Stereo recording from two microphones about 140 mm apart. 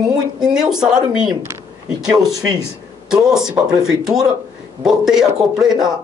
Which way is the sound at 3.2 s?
5° right (ahead or behind).